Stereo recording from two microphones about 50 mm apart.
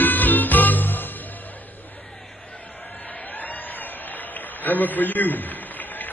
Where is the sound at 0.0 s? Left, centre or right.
Left.